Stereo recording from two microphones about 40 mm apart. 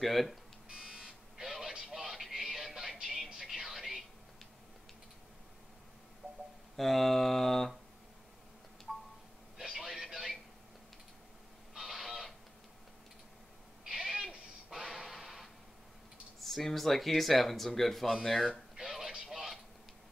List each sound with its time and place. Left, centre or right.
0.0 s speech: centre
0.7 s buzzer: centre
1.0 s buzzer: centre
1.7 s television: centre
2.3 s music: centre
6.8 s speech: centre
8.9 s a sound: centre
11.7 s fowl: centre
13.8 s owl: centre
14.8 s a sound: centre
16.3 s speech: centre
18.8 s a sound: centre